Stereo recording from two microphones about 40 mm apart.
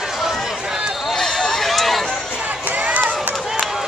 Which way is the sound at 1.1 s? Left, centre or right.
Centre.